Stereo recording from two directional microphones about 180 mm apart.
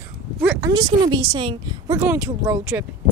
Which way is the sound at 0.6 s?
20° right (ahead or behind).